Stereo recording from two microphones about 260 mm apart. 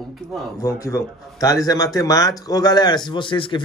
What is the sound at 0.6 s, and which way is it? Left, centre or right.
A man's voice, centre.